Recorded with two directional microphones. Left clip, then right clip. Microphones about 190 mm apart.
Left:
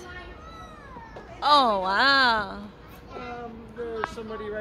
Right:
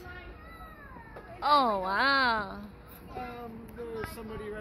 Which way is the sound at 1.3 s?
5° right (ahead or behind).